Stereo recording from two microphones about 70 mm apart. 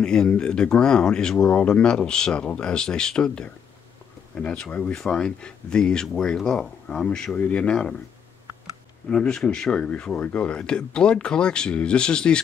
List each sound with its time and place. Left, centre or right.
0.0 s speech: centre
9.1 s speech: centre